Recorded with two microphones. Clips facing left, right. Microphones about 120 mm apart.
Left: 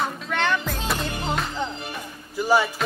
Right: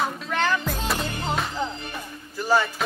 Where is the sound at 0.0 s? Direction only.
Centre (ahead or behind).